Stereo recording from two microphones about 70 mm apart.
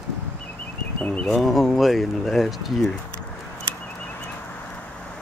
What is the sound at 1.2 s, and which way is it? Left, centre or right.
Speech, centre.